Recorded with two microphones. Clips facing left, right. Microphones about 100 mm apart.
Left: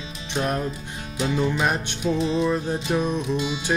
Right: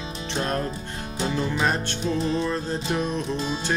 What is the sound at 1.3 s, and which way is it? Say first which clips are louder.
Music: left 2 dB; 15° left (ahead or behind).